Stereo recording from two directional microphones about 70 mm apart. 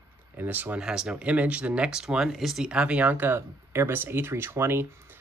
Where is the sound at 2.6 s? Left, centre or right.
Centre.